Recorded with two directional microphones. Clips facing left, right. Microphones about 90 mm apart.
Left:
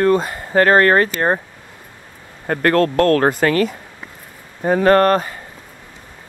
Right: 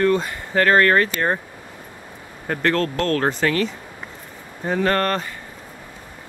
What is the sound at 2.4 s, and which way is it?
Speech, 45° left (ahead or behind).